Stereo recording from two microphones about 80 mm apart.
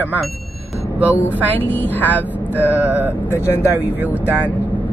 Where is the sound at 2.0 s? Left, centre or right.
Left.